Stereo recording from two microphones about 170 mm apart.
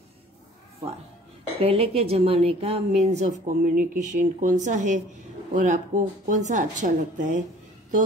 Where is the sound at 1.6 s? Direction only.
35° right (ahead or behind).